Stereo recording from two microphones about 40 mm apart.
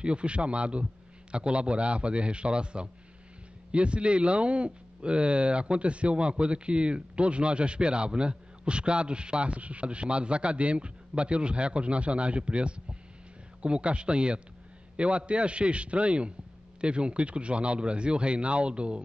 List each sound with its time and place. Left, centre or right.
0.0 s speech: right